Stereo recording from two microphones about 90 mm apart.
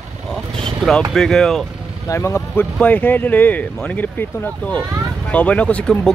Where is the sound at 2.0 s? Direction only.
30° left (ahead or behind).